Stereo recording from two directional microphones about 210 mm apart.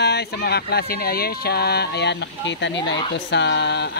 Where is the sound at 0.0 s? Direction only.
50° left (ahead or behind).